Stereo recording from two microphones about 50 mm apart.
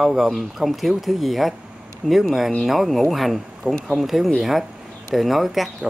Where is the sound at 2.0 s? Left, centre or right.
Centre.